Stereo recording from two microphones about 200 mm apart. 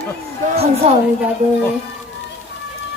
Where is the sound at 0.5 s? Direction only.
30° right (ahead or behind).